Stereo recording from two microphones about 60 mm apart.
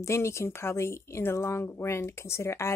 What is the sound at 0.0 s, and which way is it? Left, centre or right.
A woman's voice, left.